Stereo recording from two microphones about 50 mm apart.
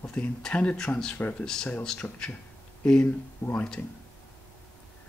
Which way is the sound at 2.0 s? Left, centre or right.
Left.